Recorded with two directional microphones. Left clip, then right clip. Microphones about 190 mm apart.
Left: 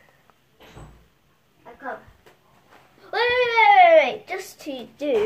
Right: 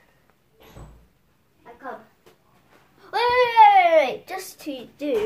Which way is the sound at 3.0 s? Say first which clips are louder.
Right 1 dB; 35° right (ahead or behind).